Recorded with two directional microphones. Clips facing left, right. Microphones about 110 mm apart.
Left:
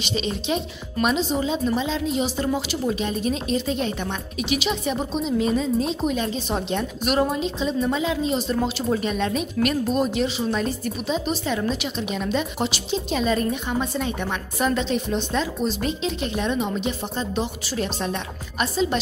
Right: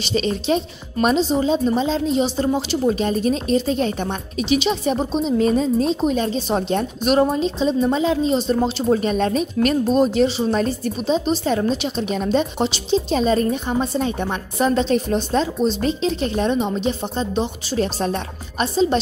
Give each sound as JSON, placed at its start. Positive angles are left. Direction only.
{"t": 0.0, "sound": "a woman's voice", "side_deg": -40}
{"t": 17.8, "sound": "a woman's voice", "side_deg": -35}